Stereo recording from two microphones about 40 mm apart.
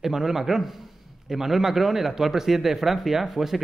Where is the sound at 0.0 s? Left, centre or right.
Centre.